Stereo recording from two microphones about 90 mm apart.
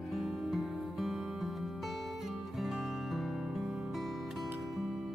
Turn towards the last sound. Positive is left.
turn(degrees=0)  # may be behind; listen again after turning